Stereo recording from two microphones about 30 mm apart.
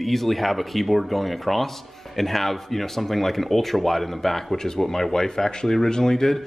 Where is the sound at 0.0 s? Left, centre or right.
Centre.